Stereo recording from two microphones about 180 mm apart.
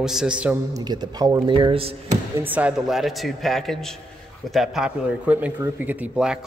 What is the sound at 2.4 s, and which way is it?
Speech, 10° right (ahead or behind).